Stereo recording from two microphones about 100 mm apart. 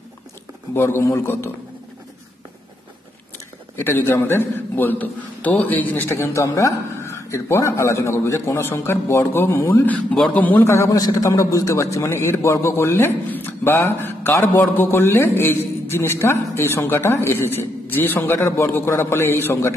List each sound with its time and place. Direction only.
0.7 s a man's voice: 25° left (ahead or behind)
3.7 s a man's voice: 25° left (ahead or behind)
10.1 s a man's voice: 5° left (ahead or behind)
10.4 s a man's voice: 15° left (ahead or behind)
10.7 s a man's voice: 30° left (ahead or behind)